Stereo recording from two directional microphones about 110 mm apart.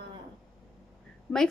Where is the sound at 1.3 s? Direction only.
10° left (ahead or behind).